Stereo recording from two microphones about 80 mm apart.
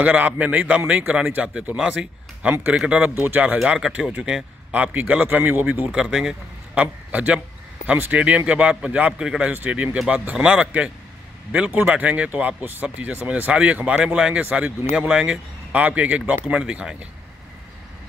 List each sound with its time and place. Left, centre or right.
0.0 s a man's voice: right
5.9 s speech: centre